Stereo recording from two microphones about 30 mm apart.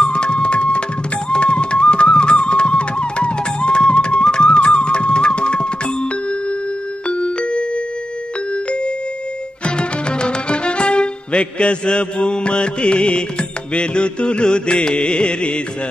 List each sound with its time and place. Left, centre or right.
0.0 s music: left
7.1 s music: left
9.7 s speech: left